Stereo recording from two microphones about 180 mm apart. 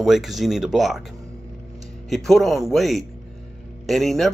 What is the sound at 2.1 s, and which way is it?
Speech, centre (ahead or behind).